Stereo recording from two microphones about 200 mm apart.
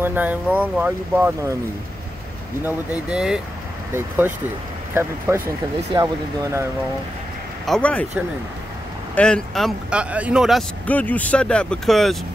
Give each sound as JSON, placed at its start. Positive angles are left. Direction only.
{"t": 0.0, "sound": "speech", "side_deg": -10}
{"t": 2.6, "sound": "speech", "side_deg": -5}
{"t": 4.9, "sound": "speech", "side_deg": -15}
{"t": 7.6, "sound": "speech", "side_deg": 5}
{"t": 9.1, "sound": "speech", "side_deg": 5}